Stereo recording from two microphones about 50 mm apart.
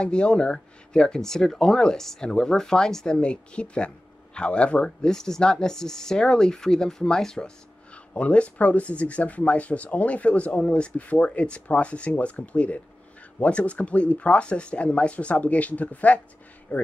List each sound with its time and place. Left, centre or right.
0.0 s speech: centre
8.1 s speech: left